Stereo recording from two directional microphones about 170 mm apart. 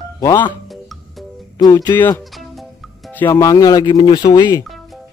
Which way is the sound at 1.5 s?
20° left (ahead or behind).